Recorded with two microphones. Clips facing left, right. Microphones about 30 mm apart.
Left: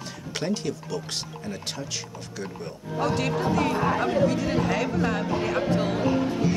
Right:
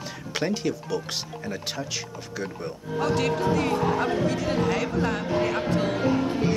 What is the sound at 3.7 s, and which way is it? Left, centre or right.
Speech, left.